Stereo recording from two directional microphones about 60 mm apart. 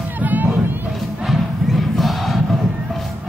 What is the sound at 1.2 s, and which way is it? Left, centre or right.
Crowd, centre.